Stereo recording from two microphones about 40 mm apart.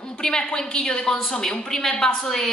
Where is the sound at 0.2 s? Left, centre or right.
Centre.